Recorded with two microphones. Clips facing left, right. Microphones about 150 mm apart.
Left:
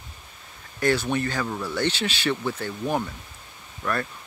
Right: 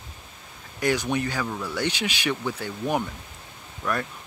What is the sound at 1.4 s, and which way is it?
Speech, 5° left (ahead or behind).